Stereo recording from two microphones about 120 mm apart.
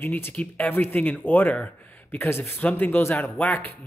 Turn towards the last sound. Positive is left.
turn(degrees=15)  # may be behind; listen again after turning